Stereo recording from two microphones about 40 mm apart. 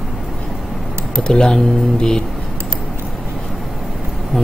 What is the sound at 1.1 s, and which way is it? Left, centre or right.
Speech, centre.